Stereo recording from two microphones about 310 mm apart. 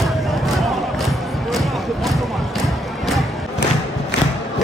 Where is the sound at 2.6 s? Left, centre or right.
Centre.